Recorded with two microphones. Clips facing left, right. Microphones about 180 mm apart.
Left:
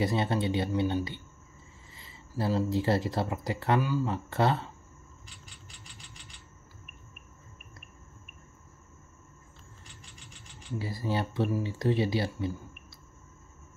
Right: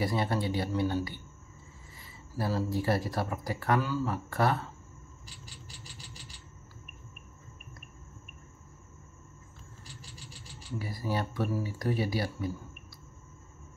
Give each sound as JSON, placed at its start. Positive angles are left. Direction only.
{"t": 0.0, "sound": "speech", "side_deg": 25}
{"t": 5.2, "sound": "a sound", "side_deg": -35}
{"t": 9.8, "sound": "vehicle", "side_deg": -35}
{"t": 10.8, "sound": "speech", "side_deg": 25}